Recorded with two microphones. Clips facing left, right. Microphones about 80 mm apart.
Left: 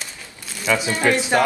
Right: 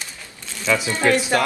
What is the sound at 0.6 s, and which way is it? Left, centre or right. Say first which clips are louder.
Speech: even; centre.